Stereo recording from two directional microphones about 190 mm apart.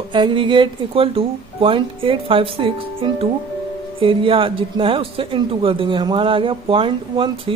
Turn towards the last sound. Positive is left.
turn(degrees=-25)  # may be behind; listen again after turning